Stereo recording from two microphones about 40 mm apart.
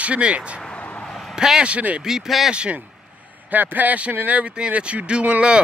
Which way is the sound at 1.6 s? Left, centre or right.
Right.